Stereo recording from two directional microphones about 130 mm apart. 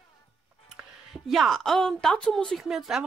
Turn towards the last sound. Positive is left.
turn(degrees=-5)  # may be behind; listen again after turning